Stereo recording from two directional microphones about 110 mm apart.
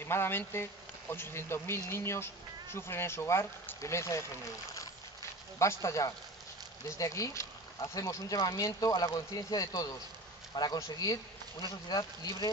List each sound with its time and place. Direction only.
0.0 s speech: 20° left (ahead or behind)
5.6 s speech: 25° left (ahead or behind)